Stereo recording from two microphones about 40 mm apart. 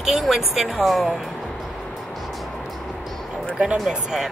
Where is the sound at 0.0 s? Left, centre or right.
Centre.